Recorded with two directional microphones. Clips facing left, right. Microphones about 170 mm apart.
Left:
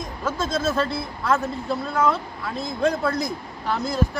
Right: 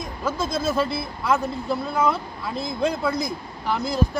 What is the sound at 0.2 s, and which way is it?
Speech, 10° right (ahead or behind).